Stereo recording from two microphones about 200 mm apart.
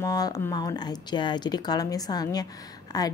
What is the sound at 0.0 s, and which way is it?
Speech, 20° left (ahead or behind).